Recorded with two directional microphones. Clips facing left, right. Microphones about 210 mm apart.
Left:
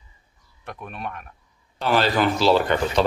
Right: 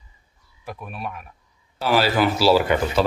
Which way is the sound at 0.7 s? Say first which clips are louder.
Right 1 dB; 5° right (ahead or behind).